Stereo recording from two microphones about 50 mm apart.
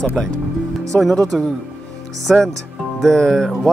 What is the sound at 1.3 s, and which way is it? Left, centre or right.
Music, centre.